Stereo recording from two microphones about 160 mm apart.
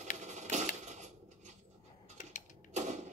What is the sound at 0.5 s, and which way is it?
Coin, 45° right (ahead or behind).